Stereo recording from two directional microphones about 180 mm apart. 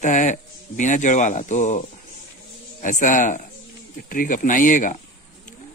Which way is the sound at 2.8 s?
45° left (ahead or behind).